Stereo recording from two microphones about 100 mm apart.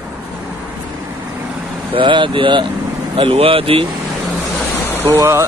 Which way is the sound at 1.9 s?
55° right (ahead or behind).